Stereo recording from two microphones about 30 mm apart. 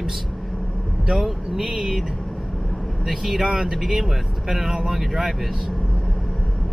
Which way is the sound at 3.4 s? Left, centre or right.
Centre.